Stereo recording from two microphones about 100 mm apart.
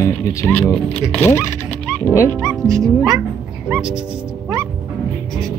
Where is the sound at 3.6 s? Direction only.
15° right (ahead or behind).